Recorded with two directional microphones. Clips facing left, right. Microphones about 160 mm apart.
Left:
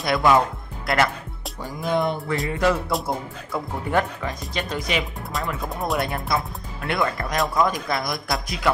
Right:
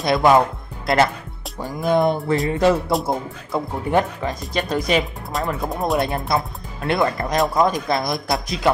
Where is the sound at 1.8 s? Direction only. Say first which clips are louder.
Right 5 dB; 45° right (ahead or behind).